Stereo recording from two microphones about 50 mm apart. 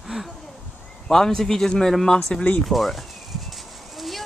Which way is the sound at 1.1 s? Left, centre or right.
Centre.